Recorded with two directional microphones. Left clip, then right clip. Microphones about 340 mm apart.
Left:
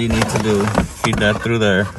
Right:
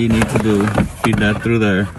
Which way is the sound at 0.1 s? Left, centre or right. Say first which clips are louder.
Right 1 dB; left.